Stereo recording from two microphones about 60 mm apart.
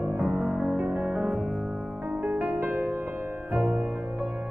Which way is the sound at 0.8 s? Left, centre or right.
Centre.